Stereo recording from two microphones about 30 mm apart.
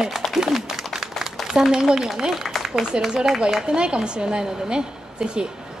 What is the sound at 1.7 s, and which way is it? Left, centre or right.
Speech, right.